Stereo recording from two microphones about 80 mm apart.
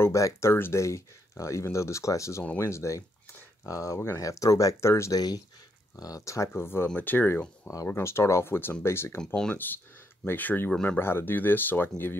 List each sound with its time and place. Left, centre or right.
0.0 s speech: left
5.1 s speech: left
6.5 s speech: left
7.7 s speech: left
9.2 s speech: centre
11.0 s speech: left